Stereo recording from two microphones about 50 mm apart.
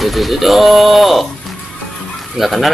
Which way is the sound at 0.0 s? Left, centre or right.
Centre.